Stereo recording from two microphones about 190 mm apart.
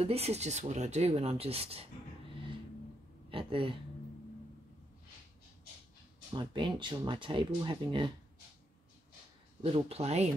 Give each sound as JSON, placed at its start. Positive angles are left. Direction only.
{"t": 0.0, "sound": "speech", "side_deg": -30}
{"t": 3.3, "sound": "speech", "side_deg": -25}
{"t": 6.3, "sound": "speech", "side_deg": -25}
{"t": 9.6, "sound": "speech", "side_deg": -30}